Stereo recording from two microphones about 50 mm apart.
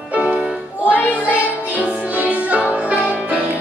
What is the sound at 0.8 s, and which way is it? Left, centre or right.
Music, left.